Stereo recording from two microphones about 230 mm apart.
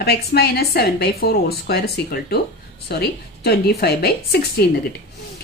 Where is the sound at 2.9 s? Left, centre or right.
Left.